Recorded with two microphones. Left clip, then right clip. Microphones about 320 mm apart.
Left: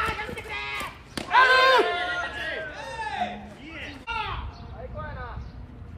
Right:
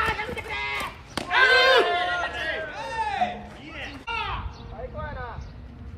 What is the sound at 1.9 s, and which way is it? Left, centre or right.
Chatter, right.